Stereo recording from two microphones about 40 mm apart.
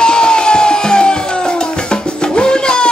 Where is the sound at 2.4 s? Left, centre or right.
Left.